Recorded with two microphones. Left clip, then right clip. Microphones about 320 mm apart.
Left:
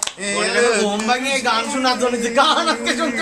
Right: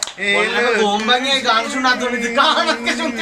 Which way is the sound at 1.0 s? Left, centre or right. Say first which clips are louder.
Right 3 dB; centre.